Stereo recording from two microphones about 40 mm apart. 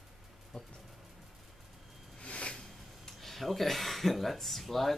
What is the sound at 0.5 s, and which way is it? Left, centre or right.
Speech, left.